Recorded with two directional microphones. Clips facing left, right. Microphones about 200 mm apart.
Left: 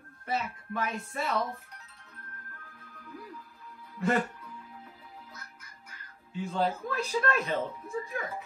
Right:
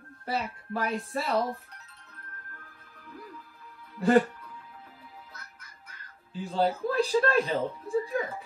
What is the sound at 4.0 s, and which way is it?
Speech, 35° right (ahead or behind).